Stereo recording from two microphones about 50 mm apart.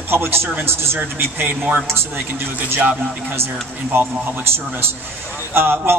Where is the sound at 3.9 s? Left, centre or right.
Right.